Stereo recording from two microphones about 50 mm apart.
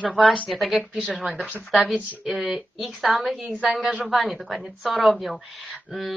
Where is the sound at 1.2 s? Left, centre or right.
Right.